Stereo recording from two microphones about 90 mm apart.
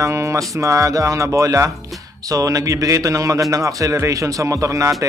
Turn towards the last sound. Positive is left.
turn(degrees=-35)  # may be behind; listen again after turning